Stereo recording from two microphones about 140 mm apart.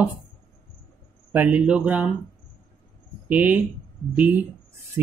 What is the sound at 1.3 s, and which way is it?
Speech, 10° right (ahead or behind).